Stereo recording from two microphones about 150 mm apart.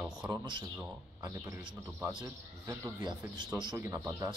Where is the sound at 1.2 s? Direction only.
20° right (ahead or behind).